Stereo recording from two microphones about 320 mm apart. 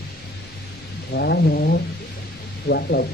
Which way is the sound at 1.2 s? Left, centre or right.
Left.